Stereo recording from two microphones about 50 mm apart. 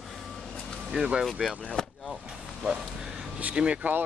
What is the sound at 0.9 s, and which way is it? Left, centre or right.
Speech, centre.